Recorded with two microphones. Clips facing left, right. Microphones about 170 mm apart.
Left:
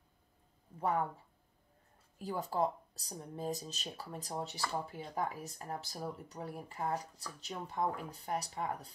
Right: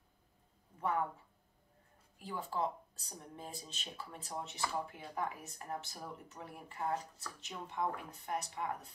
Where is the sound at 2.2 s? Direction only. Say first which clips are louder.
Left 4 dB; 40° left (ahead or behind).